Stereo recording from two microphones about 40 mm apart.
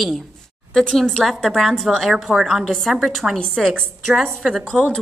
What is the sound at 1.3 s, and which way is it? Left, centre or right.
A woman's voice, centre.